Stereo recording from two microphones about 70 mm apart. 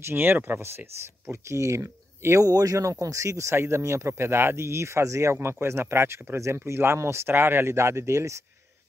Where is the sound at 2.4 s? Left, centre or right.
Right.